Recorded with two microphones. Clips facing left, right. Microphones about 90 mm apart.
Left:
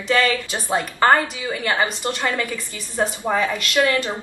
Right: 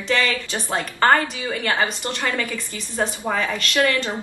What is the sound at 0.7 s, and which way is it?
A woman's voice, 15° left (ahead or behind).